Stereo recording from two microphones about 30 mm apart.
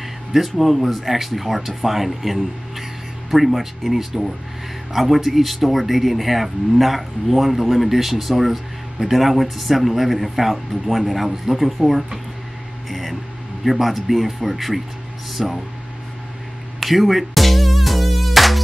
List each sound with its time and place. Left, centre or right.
0.3 s speech: centre
16.8 s music: centre